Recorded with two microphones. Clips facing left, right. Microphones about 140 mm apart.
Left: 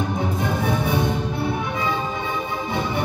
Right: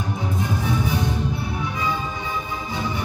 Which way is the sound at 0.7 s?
55° left (ahead or behind).